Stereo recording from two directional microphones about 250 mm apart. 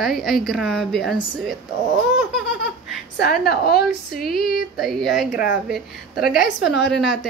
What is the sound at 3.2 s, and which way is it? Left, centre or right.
Speech, left.